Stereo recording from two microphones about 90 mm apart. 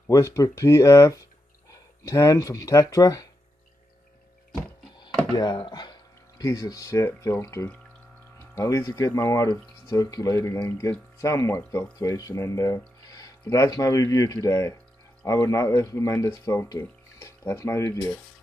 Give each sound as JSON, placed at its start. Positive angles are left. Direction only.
{"t": 0.1, "sound": "speech", "side_deg": 40}
{"t": 5.3, "sound": "a sound", "side_deg": 55}
{"t": 6.4, "sound": "speech", "side_deg": 40}